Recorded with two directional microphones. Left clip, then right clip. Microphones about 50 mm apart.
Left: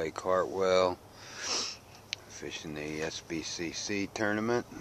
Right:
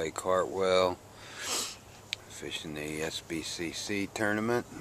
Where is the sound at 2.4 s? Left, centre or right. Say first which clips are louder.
Right 1 dB; left.